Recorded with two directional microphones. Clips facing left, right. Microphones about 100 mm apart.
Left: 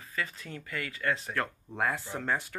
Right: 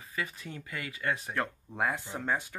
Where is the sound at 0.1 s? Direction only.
15° right (ahead or behind).